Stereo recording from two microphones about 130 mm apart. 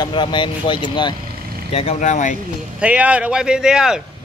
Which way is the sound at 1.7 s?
50° left (ahead or behind).